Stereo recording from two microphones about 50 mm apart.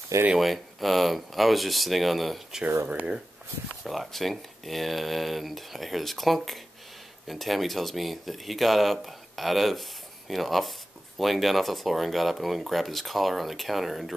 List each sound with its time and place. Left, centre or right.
0.4 s speech: centre
2.9 s speech: right
3.8 s speech: centre